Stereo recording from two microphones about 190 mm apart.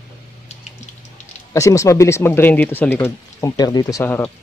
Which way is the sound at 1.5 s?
15° left (ahead or behind).